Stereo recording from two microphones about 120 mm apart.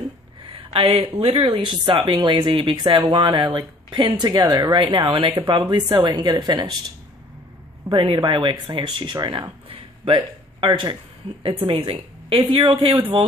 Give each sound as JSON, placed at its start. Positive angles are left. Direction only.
{"t": 0.5, "sound": "a sound", "side_deg": -50}
{"t": 1.0, "sound": "speech", "side_deg": -50}
{"t": 4.7, "sound": "speech", "side_deg": -45}
{"t": 7.9, "sound": "speech", "side_deg": -45}